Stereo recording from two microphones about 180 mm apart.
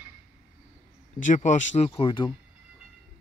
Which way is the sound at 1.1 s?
45° left (ahead or behind).